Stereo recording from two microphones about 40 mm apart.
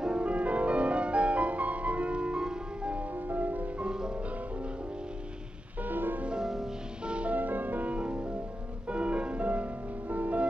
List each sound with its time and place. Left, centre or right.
0.0 s music: right
3.2 s music: right
3.8 s music: right
5.8 s music: right
6.4 s music: centre
7.1 s music: right
7.3 s music: right